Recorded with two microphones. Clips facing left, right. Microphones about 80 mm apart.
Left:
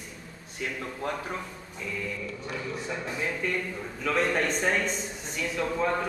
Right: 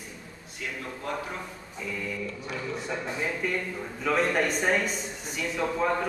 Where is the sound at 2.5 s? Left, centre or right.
Centre.